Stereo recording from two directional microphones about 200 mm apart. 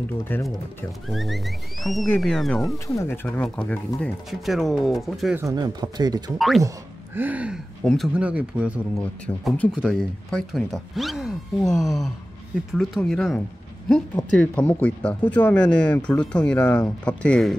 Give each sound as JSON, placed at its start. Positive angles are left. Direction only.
{"t": 0.3, "sound": "speech", "side_deg": 10}
{"t": 3.0, "sound": "speech", "side_deg": 10}
{"t": 5.4, "sound": "speech", "side_deg": -20}
{"t": 6.3, "sound": "speech", "side_deg": 0}
{"t": 9.2, "sound": "speech", "side_deg": 5}